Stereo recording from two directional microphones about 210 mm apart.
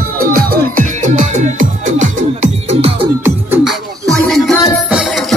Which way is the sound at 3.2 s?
10° right (ahead or behind).